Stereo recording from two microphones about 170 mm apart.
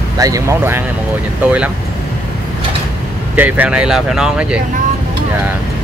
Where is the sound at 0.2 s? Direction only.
20° right (ahead or behind).